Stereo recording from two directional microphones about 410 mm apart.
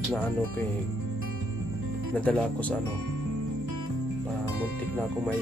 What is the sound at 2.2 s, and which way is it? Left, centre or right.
Speech, centre.